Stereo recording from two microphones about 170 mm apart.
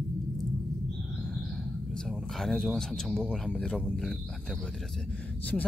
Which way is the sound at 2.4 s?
Centre (ahead or behind).